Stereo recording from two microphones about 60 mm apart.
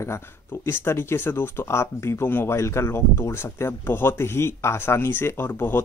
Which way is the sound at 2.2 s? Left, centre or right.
Left.